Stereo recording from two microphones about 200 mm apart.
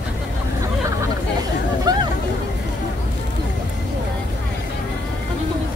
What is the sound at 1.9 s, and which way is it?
Hubbub, 20° right (ahead or behind).